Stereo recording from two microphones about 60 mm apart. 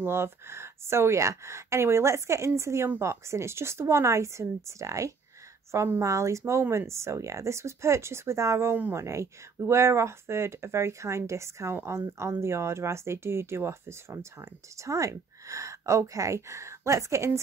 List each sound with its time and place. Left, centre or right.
0.0 s speech: right
5.7 s speech: right